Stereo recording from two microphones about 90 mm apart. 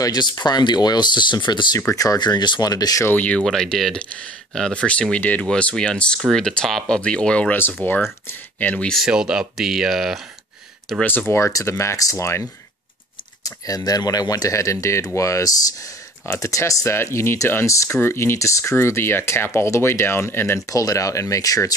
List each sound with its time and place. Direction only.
0.0 s speech: 50° left (ahead or behind)
1.8 s speech: 35° left (ahead or behind)
2.1 s speech: 55° left (ahead or behind)
3.1 s speech: 15° left (ahead or behind)
8.9 s speech: 5° right (ahead or behind)
11.1 s speech: 25° left (ahead or behind)
20.6 s speech: 40° left (ahead or behind)